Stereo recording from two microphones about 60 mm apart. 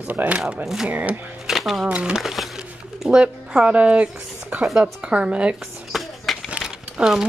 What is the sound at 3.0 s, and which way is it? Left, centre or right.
Speech, centre.